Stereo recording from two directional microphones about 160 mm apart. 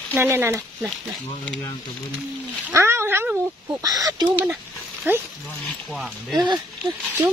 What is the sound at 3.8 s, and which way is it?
Speech, 20° right (ahead or behind).